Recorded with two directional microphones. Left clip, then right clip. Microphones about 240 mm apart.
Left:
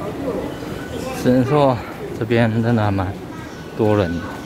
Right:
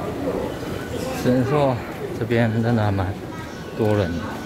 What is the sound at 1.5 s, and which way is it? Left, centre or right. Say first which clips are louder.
Speech: left 4 dB; centre.